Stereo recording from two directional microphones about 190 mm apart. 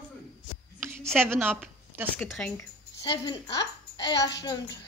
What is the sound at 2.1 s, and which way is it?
Speech, 5° left (ahead or behind).